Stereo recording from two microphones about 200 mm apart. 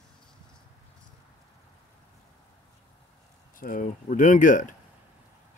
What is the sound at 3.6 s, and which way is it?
Speech, 40° left (ahead or behind).